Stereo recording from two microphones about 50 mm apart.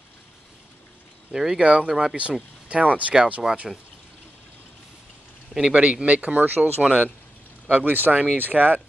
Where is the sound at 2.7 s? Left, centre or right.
Right.